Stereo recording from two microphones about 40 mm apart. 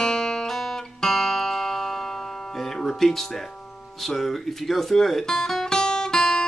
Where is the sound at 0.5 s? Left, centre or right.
Centre.